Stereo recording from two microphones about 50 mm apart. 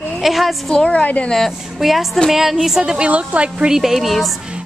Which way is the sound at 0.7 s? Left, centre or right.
Left.